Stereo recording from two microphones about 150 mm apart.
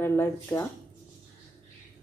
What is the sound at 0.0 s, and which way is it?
Speech, 15° left (ahead or behind).